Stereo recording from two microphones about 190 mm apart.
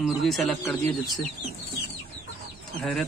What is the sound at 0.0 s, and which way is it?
Speech, centre (ahead or behind).